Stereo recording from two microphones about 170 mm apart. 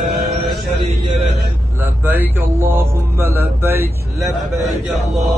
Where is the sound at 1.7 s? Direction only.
10° right (ahead or behind).